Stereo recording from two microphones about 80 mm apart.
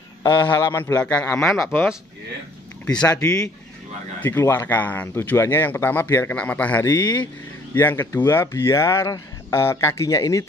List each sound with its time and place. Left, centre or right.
0.2 s a man's voice: left
0.5 s speech: left
1.3 s speech: centre
3.1 s a man's voice: left
4.2 s speech: left
6.3 s speech: centre
6.8 s speech: left
7.7 s speech: left